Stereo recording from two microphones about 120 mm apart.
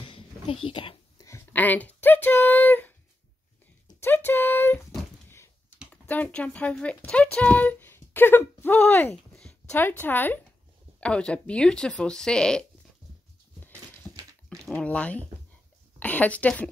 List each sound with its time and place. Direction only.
0.1 s a sound: 45° left (ahead or behind)
1.1 s speech: 25° left (ahead or behind)
4.0 s speech: 20° left (ahead or behind)
6.0 s speech: 10° left (ahead or behind)
13.7 s a sound: 25° right (ahead or behind)
14.7 s a woman's voice: 10° left (ahead or behind)